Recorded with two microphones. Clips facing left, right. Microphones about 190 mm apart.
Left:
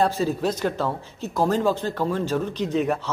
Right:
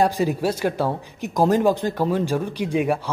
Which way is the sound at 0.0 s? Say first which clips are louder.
Right 2 dB; 15° right (ahead or behind).